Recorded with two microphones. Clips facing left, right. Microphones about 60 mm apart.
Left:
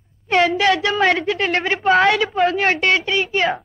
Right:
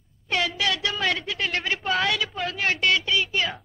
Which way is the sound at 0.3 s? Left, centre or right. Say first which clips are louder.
Left 10 dB; left.